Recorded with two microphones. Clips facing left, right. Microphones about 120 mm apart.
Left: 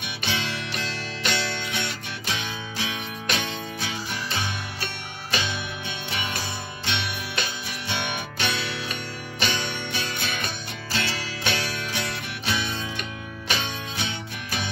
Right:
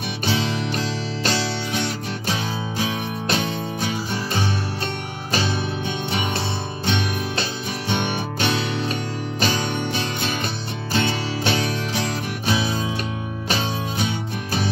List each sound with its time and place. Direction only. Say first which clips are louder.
0.2 s music: right 7 dB; 40° right (ahead or behind)
6.9 s music: right 7 dB; 45° right (ahead or behind)